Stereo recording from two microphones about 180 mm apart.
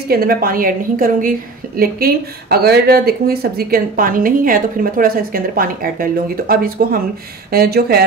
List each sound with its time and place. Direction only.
0.1 s speech: 55° right (ahead or behind)